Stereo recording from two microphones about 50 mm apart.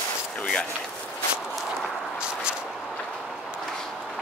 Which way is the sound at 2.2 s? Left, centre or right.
Centre.